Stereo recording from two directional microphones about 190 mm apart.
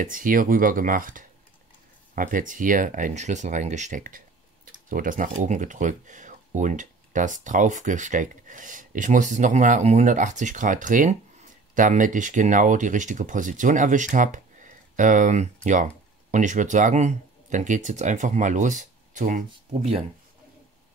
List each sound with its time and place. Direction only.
0.0 s speech: 45° right (ahead or behind)